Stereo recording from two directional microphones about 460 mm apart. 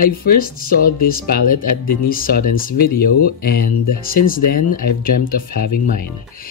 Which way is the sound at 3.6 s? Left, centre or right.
Left.